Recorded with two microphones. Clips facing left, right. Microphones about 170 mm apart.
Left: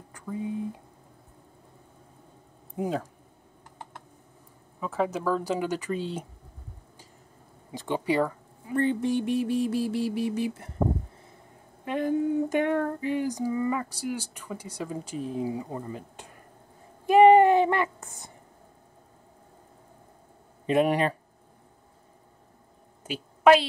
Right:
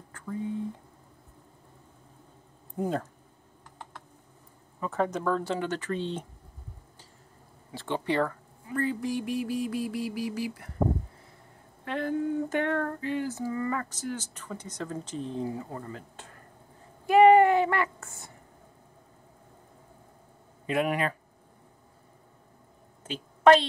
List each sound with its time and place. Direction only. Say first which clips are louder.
0.1 s speech: left 1 dB; 15° left (ahead or behind)
2.7 s speech: even; 5° left (ahead or behind)
4.7 s female singing: left 1 dB; 5° left (ahead or behind)
7.7 s speech: left 2 dB; 15° left (ahead or behind)
8.7 s music: left 4 dB; 25° left (ahead or behind)
11.8 s female singing: left 3 dB; 15° left (ahead or behind)
17.0 s a sound: left 2 dB; 20° left (ahead or behind)
20.6 s speech: left 5 dB; 30° left (ahead or behind)
23.0 s a sound: even; 10° left (ahead or behind)